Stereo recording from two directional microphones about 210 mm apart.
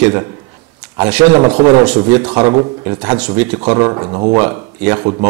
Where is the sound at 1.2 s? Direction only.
25° right (ahead or behind).